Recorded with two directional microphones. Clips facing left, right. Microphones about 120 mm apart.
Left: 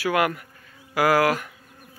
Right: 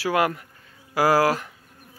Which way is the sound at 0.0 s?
30° right (ahead or behind).